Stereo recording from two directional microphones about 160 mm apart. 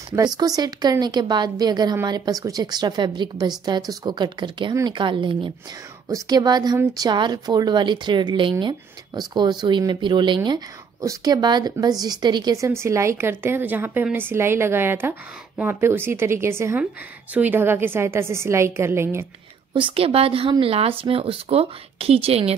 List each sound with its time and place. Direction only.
0.4 s a woman's voice: 25° right (ahead or behind)
19.7 s speech: 35° right (ahead or behind)